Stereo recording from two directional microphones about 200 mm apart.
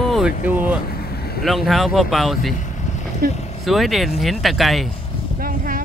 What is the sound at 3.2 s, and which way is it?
Speech, 50° right (ahead or behind).